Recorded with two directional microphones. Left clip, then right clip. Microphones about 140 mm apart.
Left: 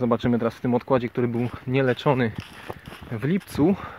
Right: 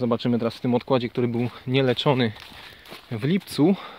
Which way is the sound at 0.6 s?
25° right (ahead or behind).